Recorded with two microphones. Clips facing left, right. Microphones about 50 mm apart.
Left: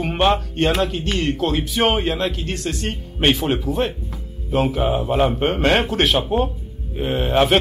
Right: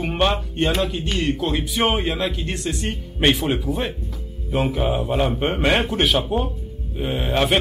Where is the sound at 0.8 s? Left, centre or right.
Left.